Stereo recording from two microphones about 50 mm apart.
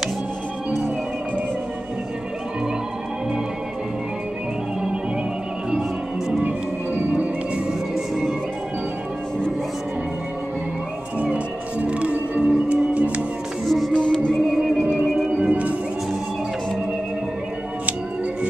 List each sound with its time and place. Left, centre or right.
6.4 s music: right
11.1 s music: right
13.7 s music: centre
13.9 s music: centre
14.5 s music: centre
15.3 s music: right